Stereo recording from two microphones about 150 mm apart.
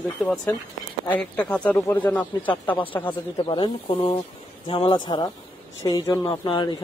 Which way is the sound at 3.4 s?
35° left (ahead or behind).